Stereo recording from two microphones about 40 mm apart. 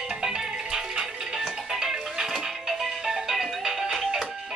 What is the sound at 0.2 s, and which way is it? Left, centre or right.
Music, centre.